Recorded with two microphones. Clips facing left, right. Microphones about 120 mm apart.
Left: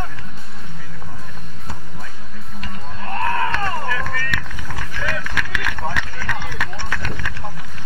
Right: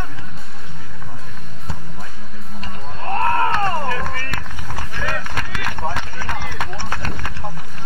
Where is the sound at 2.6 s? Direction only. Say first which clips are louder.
Right 3 dB; 35° right (ahead or behind).